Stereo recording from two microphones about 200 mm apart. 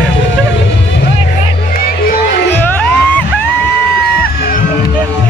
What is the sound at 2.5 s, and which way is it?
Music, 10° left (ahead or behind).